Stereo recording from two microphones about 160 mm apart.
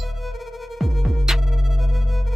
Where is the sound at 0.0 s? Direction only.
Centre (ahead or behind).